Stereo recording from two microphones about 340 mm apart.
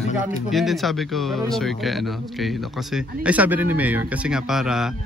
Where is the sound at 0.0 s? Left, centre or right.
Left.